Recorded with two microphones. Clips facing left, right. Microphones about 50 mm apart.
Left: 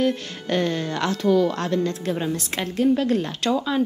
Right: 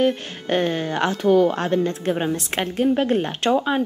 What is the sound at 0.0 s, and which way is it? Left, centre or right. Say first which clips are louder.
Speech: right 2 dB; right.